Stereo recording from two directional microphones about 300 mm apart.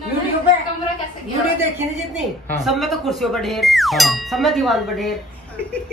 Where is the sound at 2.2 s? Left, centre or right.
Centre.